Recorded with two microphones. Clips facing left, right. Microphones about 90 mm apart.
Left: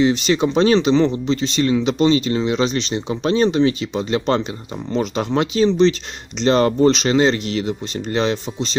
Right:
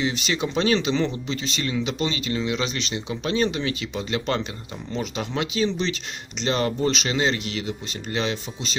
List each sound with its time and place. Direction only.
0.0 s speech: 35° left (ahead or behind)
4.9 s speech: 45° left (ahead or behind)